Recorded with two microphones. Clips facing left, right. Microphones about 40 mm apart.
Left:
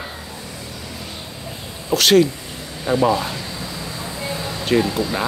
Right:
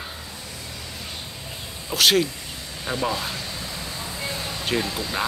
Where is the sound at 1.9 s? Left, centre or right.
Centre.